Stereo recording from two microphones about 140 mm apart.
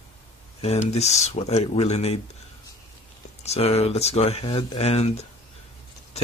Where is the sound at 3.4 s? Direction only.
45° left (ahead or behind).